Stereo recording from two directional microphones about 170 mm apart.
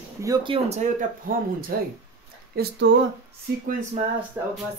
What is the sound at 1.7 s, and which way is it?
Speech, 60° right (ahead or behind).